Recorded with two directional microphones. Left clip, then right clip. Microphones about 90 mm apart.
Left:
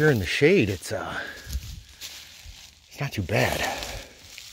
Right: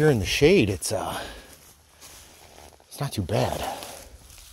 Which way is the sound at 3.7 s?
55° left (ahead or behind).